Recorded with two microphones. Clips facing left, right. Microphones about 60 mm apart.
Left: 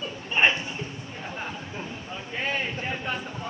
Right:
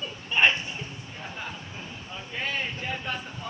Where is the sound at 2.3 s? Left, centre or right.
Left.